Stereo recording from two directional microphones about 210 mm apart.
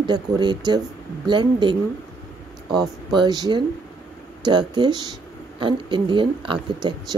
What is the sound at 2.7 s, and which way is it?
A woman's voice, 20° right (ahead or behind).